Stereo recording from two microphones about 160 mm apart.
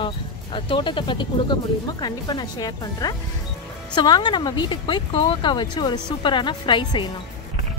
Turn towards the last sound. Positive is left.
turn(degrees=30)  # may be behind; listen again after turning